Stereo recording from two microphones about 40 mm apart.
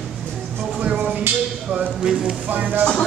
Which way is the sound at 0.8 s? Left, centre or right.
Right.